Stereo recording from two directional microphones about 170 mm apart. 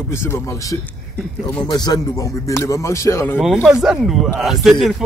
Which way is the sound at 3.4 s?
Centre (ahead or behind).